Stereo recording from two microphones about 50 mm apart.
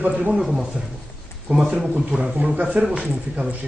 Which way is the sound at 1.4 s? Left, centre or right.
Centre.